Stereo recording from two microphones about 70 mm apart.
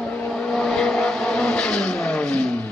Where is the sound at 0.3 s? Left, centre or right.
Centre.